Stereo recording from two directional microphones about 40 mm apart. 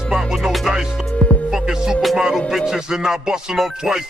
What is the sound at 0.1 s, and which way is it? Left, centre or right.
Music, centre.